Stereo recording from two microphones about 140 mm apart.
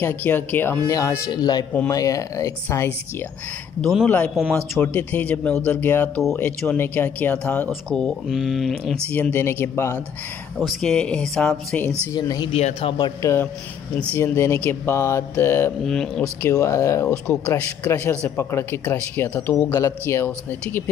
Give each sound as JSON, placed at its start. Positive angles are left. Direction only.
{"t": 0.0, "sound": "speech", "side_deg": 15}
{"t": 3.8, "sound": "speech", "side_deg": 5}
{"t": 9.1, "sound": "speech", "side_deg": 15}
{"t": 10.6, "sound": "speech", "side_deg": 5}
{"t": 12.1, "sound": "speech", "side_deg": 30}
{"t": 12.5, "sound": "a man's voice", "side_deg": 50}
{"t": 12.9, "sound": "a man's voice", "side_deg": 30}
{"t": 13.9, "sound": "speech", "side_deg": 15}
{"t": 15.8, "sound": "speech", "side_deg": 5}
{"t": 16.4, "sound": "speech", "side_deg": 20}